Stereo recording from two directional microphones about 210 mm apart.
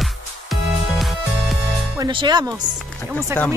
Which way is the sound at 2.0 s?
20° right (ahead or behind).